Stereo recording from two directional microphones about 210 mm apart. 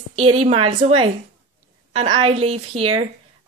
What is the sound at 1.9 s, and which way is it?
Speech, 30° right (ahead or behind).